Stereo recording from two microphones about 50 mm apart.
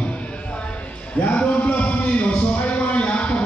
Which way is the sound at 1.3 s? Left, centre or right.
Left.